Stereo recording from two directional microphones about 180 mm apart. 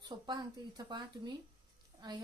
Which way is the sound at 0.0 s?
25° right (ahead or behind).